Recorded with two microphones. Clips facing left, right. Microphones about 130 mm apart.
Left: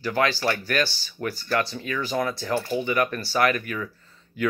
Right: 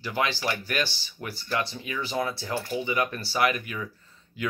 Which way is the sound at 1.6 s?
20° right (ahead or behind).